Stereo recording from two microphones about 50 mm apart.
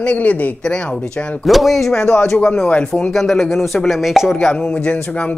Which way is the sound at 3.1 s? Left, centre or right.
Centre.